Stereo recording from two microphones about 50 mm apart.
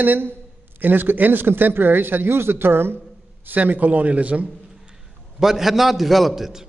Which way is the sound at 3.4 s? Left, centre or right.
Right.